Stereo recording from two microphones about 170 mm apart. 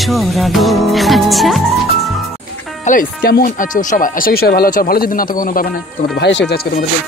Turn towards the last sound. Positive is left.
turn(degrees=85)